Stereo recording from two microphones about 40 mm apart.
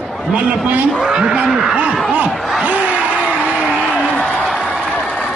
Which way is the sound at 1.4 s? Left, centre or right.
Centre.